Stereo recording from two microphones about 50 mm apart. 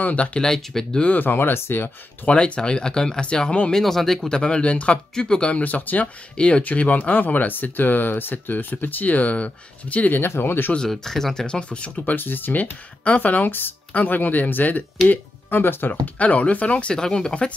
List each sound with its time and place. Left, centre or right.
0.0 s speech: left
0.4 s speech: centre
1.1 s speech: left
2.2 s speech: left
3.7 s speech: centre
4.3 s speech: centre; by 6.0 s left
6.3 s speech: left
10.1 s speech: left
10.9 s speech: centre; by 11.9 s left
12.0 s speech: left
13.0 s speech: left
16.2 s speech: left